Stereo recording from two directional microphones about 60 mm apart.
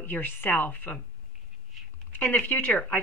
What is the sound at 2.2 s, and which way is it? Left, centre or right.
Speech, left.